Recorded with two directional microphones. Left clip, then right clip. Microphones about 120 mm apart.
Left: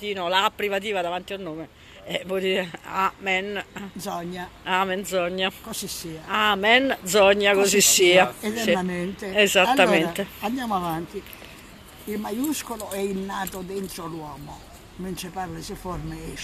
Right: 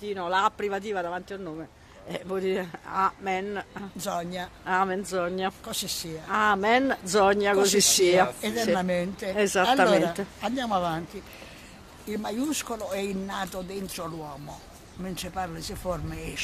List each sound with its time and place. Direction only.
0.0 s speech: 10° right (ahead or behind)
4.0 s speech: 25° right (ahead or behind)
4.6 s speech: 10° right (ahead or behind)
12.2 s speech: 20° right (ahead or behind)